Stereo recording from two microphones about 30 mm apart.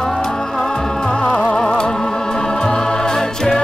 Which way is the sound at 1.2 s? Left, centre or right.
Left.